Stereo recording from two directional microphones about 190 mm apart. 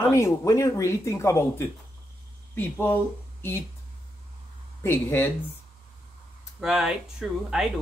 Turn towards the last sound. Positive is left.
turn(degrees=-5)  # may be behind; listen again after turning